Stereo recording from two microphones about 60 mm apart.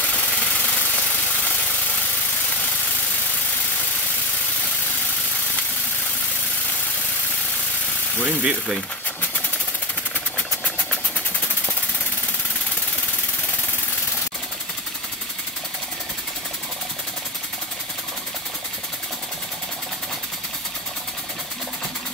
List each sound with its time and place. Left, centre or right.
0.0 s vehicle: left
8.2 s speech: centre
10.3 s engine: left